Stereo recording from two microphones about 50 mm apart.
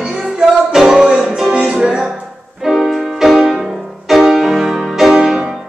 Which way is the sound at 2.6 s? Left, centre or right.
Centre.